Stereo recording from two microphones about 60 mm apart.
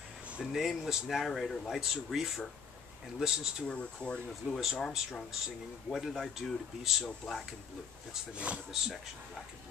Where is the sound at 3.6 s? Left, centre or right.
Centre.